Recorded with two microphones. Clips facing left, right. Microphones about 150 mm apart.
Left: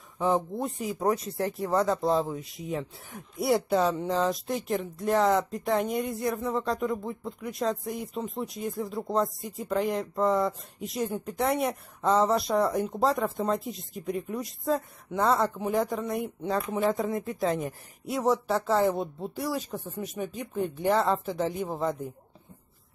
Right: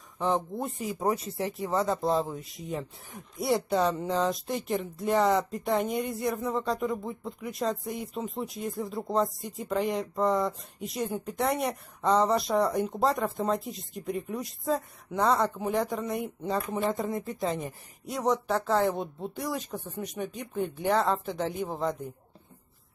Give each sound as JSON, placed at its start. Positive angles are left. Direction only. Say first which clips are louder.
{"t": 0.2, "sound": "speech", "louder": "left 2 dB", "side_deg": 0}